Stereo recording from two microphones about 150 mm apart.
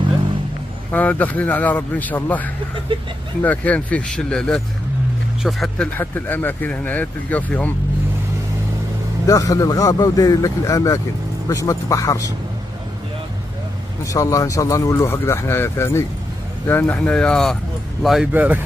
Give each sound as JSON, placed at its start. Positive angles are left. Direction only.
{"t": 0.9, "sound": "speech", "side_deg": 10}
{"t": 5.9, "sound": "speech", "side_deg": 10}
{"t": 9.3, "sound": "speech", "side_deg": 25}
{"t": 14.0, "sound": "speech", "side_deg": 20}